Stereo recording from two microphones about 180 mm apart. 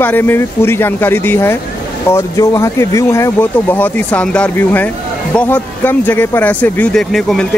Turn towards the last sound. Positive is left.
turn(degrees=0)  # may be behind; listen again after turning